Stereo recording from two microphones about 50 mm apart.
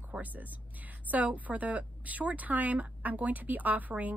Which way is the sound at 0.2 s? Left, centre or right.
Right.